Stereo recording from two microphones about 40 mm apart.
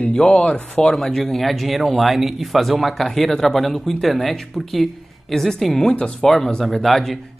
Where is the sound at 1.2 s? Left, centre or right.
Centre.